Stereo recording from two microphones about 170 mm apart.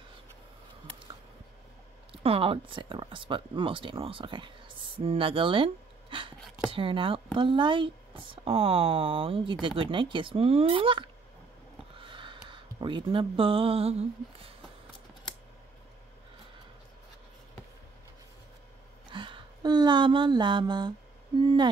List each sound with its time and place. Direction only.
2.2 s speech: 35° right (ahead or behind)
19.0 s a sound: 30° right (ahead or behind)
21.4 s hoot: 25° right (ahead or behind)